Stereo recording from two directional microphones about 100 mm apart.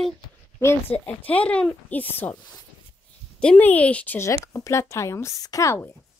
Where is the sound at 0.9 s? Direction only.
15° left (ahead or behind).